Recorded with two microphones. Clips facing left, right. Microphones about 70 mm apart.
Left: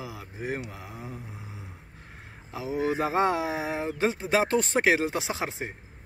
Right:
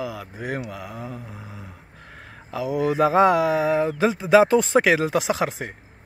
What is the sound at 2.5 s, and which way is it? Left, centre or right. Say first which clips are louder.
Speech: right 5 dB; right.